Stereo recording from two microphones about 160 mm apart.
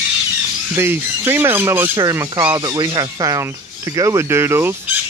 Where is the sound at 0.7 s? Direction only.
15° right (ahead or behind).